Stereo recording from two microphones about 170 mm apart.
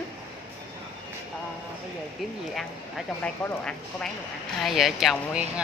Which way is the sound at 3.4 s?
5° left (ahead or behind).